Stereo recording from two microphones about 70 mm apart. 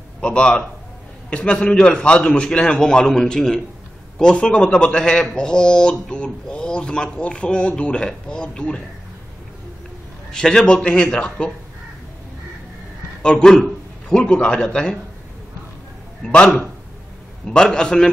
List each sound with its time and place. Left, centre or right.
0.2 s speech: centre
10.3 s speech: centre
13.2 s a man's voice: centre
16.2 s speech: centre